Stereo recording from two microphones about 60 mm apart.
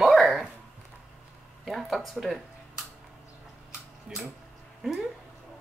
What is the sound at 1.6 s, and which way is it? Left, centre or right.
Speech, centre.